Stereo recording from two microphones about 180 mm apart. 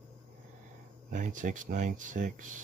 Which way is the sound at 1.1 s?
45° right (ahead or behind).